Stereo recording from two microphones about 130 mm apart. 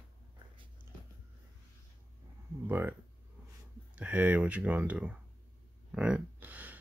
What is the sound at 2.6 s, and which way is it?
Speech, 15° right (ahead or behind).